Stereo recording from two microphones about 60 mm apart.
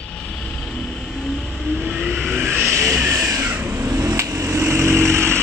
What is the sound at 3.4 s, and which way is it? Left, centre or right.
Vehicle, right.